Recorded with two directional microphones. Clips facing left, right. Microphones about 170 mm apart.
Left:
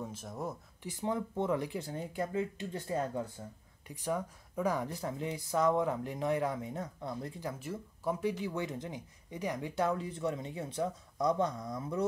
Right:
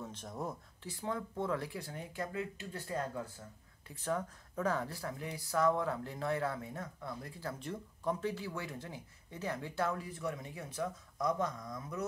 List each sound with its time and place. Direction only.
0.0 s speech: 5° left (ahead or behind)
0.8 s speech: 20° left (ahead or behind)
7.5 s speech: 5° left (ahead or behind); by 12.0 s 30° left (ahead or behind)